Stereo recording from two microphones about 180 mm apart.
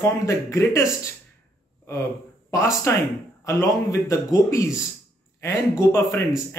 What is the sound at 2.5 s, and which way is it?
Speech, 15° left (ahead or behind).